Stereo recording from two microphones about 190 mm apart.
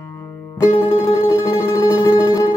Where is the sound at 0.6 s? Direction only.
25° left (ahead or behind).